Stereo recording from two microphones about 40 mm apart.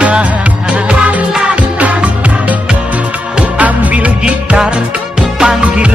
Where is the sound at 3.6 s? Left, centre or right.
Right.